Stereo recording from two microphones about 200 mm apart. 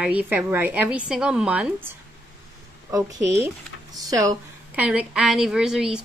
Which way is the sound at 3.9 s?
20° right (ahead or behind).